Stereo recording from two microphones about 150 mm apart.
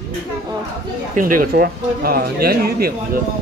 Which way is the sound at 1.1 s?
65° right (ahead or behind).